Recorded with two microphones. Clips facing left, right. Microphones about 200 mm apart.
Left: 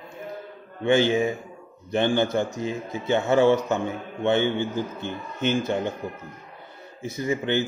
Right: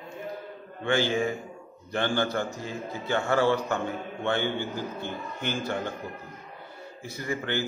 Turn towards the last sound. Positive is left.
turn(degrees=20)  # may be behind; listen again after turning